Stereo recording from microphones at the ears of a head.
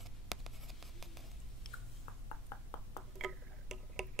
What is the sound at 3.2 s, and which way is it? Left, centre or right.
Tick-tock, right.